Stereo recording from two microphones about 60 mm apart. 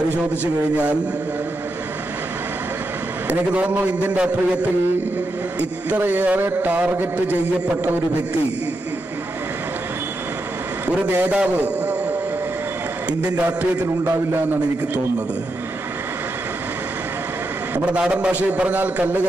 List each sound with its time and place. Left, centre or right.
3.3 s a man's voice: right
5.6 s a man's voice: right
11.1 s a man's voice: right
13.2 s a man's voice: right
17.7 s a man's voice: centre